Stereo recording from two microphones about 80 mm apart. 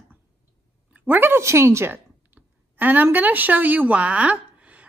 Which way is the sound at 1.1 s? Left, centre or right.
Right.